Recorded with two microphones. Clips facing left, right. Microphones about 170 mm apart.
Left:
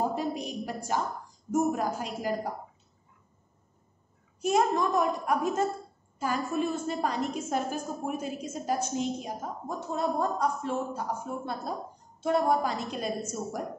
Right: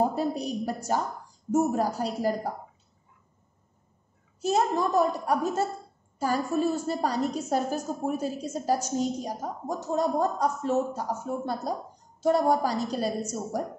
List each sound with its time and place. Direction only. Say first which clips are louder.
0.1 s a woman's voice: right 3 dB; 35° right (ahead or behind)
4.4 s a woman's voice: even; 35° right (ahead or behind)